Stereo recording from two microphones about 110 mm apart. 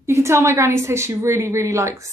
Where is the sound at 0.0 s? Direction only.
25° right (ahead or behind).